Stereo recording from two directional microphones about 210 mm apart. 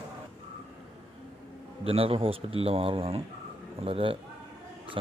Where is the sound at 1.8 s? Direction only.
25° right (ahead or behind).